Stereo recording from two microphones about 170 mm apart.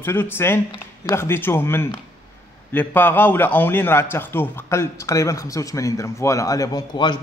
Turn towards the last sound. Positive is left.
turn(degrees=25)  # may be behind; listen again after turning